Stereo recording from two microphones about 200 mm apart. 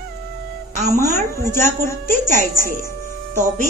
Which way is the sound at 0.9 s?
15° left (ahead or behind).